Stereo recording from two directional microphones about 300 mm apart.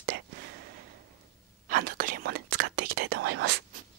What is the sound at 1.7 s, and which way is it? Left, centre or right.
Whispering, right.